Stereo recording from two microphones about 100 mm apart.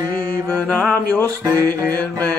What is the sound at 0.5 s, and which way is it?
Mantra, 10° left (ahead or behind).